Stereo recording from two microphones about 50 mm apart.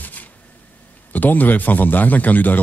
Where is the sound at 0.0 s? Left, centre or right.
Left.